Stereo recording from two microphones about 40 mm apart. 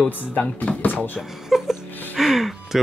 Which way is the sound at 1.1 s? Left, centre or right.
Centre.